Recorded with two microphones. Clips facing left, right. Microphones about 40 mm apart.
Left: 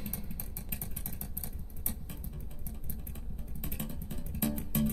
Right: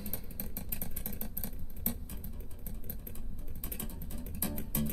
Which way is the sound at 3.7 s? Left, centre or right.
Left.